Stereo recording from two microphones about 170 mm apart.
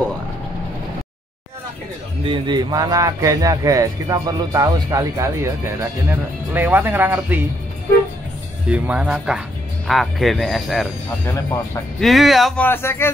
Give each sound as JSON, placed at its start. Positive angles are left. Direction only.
{"t": 2.2, "sound": "speech", "side_deg": -25}
{"t": 8.6, "sound": "speech", "side_deg": -10}
{"t": 11.2, "sound": "speech", "side_deg": 15}
{"t": 12.0, "sound": "speech", "side_deg": 0}
{"t": 12.6, "sound": "speech", "side_deg": 10}